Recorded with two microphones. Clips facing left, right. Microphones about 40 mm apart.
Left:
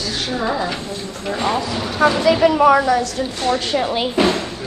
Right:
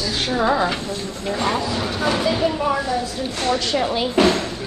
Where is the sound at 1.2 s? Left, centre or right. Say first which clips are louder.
Left 2 dB; left.